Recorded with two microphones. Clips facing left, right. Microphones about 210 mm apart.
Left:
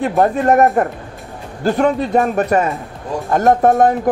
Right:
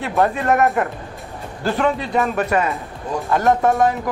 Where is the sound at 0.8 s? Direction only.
35° left (ahead or behind).